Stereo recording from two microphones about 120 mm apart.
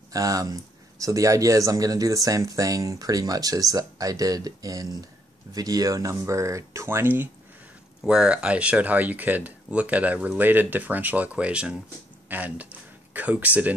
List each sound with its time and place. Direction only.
0.1 s speech: 30° right (ahead or behind)
8.0 s speech: 5° right (ahead or behind)